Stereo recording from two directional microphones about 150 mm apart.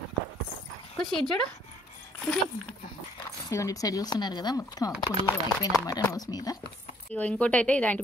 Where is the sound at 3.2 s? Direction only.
20° left (ahead or behind).